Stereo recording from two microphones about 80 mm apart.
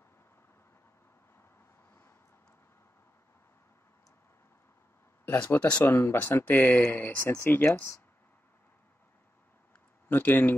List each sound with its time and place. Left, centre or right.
5.4 s speech: centre
5.9 s speech: left
7.2 s speech: left
10.0 s speech: left